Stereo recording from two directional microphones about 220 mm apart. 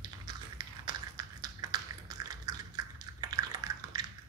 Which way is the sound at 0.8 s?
15° right (ahead or behind).